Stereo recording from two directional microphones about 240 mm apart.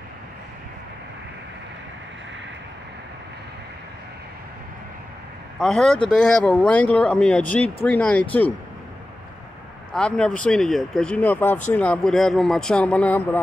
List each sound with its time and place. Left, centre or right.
5.6 s speech: centre
9.9 s speech: centre